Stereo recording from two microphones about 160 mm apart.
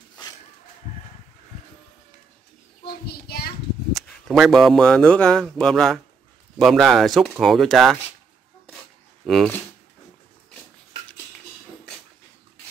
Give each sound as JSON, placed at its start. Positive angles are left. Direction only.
{"t": 2.9, "sound": "child singing", "side_deg": 75}
{"t": 3.9, "sound": "speech", "side_deg": 0}
{"t": 9.2, "sound": "speech", "side_deg": 0}